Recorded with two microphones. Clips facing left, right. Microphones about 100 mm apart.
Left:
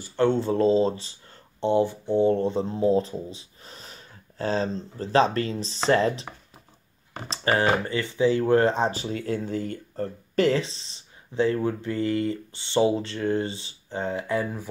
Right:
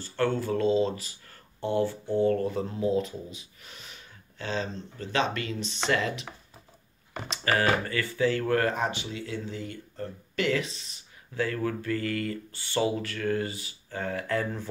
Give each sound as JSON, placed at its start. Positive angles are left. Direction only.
{"t": 0.0, "sound": "speech", "side_deg": 20}
{"t": 7.2, "sound": "speech", "side_deg": 30}
{"t": 8.9, "sound": "speech", "side_deg": 45}